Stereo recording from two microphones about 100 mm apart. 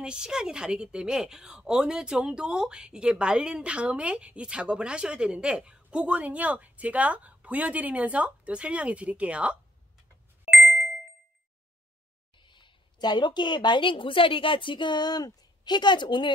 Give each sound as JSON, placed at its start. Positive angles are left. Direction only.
{"t": 0.0, "sound": "a woman's voice", "side_deg": -10}
{"t": 10.5, "sound": "ding", "side_deg": 0}
{"t": 12.4, "sound": "a woman's voice", "side_deg": 55}